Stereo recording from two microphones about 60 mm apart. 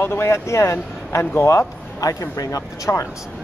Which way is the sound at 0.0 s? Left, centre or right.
Left.